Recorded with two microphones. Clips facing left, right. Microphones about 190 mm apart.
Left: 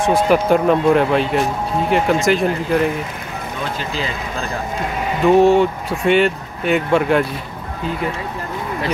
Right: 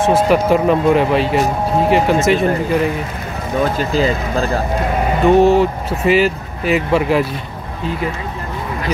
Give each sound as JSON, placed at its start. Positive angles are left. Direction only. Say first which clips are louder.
{"t": 0.0, "sound": "speech", "louder": "right 2 dB", "side_deg": 0}
{"t": 3.6, "sound": "speech", "louder": "right 9 dB", "side_deg": -45}
{"t": 5.2, "sound": "speech", "louder": "even", "side_deg": 0}